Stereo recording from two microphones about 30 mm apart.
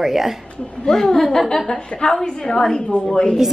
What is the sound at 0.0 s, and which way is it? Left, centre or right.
Speech, centre.